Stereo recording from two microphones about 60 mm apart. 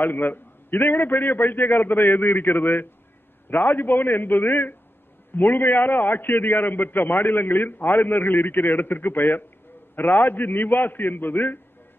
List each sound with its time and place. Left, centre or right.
0.0 s a man's voice: left